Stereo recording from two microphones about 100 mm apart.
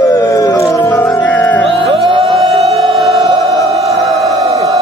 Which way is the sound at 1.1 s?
15° left (ahead or behind).